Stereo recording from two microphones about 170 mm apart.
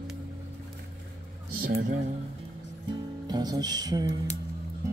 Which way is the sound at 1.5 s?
55° right (ahead or behind).